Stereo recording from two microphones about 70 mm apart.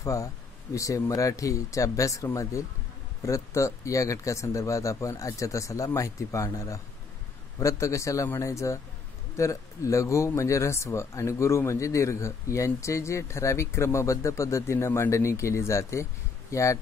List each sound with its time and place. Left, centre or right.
0.0 s speech: left